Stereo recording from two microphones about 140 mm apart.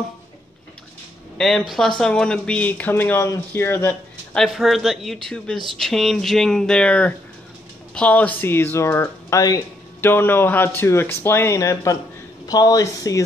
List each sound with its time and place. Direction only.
1.4 s speech: centre (ahead or behind)
4.4 s speech: centre (ahead or behind); by 13.2 s 25° left (ahead or behind)